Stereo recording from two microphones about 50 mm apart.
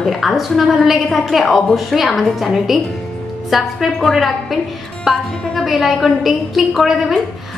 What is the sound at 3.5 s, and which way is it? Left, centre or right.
A woman's voice, centre.